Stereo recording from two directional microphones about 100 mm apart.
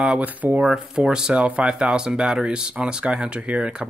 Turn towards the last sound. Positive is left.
turn(degrees=-10)  # may be behind; listen again after turning